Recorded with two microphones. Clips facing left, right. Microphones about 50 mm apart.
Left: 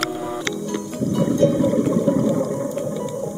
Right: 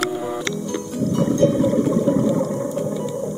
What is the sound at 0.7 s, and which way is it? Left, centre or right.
Music, centre.